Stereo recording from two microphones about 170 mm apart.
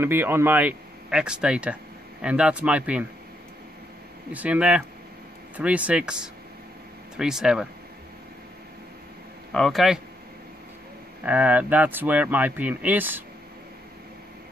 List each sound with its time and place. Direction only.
0.0 s speech: 15° right (ahead or behind)
4.3 s speech: 10° right (ahead or behind)
9.5 s speech: centre (ahead or behind)
11.2 s speech: 10° right (ahead or behind)